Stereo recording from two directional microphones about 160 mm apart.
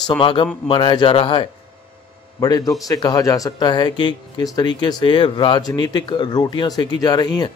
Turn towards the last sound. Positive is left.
turn(degrees=25)  # may be behind; listen again after turning